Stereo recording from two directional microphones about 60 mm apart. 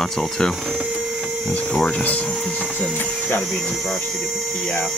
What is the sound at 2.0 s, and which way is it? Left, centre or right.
Printer, left.